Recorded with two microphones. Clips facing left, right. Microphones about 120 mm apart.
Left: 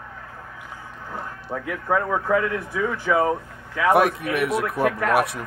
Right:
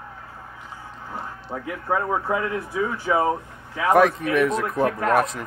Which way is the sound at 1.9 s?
20° right (ahead or behind).